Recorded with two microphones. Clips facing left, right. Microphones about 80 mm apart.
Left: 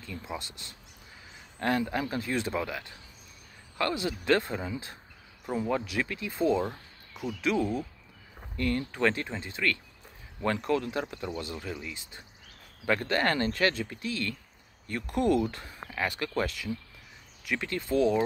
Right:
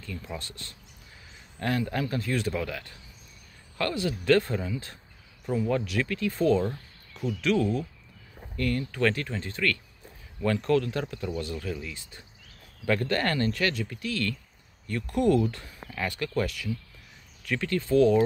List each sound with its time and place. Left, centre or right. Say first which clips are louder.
0.0 s speech: even; centre